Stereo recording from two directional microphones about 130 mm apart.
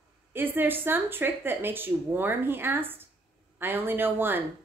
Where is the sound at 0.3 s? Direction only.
15° right (ahead or behind).